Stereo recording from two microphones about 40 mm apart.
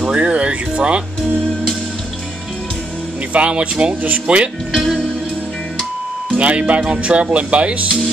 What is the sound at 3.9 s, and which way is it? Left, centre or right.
Speech, right.